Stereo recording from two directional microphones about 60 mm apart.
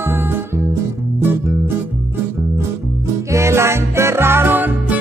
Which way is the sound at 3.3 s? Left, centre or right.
Right.